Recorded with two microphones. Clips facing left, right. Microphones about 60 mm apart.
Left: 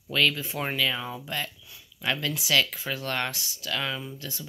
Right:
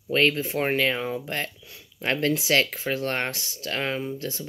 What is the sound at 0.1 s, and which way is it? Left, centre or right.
Speech, right.